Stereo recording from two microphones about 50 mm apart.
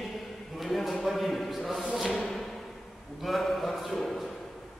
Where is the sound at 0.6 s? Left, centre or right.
Centre.